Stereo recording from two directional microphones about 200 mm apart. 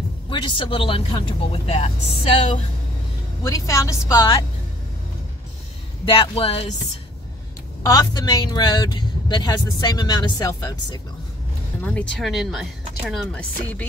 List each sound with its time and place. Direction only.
0.3 s speech: 25° left (ahead or behind)
3.4 s a woman's voice: 15° left (ahead or behind)
6.0 s speech: 25° left (ahead or behind)
7.8 s speech: 20° left (ahead or behind)
11.8 s speech: 5° left (ahead or behind)